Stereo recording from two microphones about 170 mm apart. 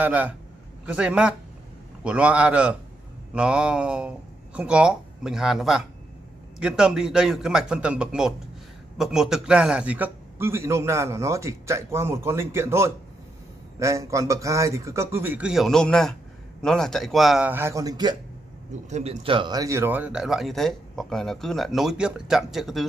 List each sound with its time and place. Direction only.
0.0 s a man's voice: 10° right (ahead or behind)
18.9 s speech: 40° right (ahead or behind); by 22.8 s centre (ahead or behind)